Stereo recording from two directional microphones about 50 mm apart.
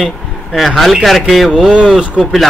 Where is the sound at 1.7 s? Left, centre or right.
Centre.